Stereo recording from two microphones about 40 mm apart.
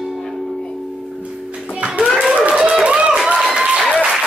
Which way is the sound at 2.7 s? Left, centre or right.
Right.